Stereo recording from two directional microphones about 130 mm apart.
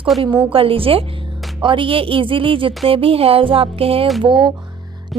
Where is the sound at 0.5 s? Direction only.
45° right (ahead or behind).